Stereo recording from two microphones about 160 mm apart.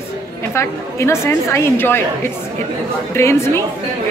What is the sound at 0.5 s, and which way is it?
Speech, 15° left (ahead or behind).